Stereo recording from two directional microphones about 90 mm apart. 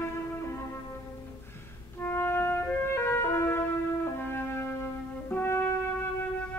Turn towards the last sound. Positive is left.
turn(degrees=25)  # may be behind; listen again after turning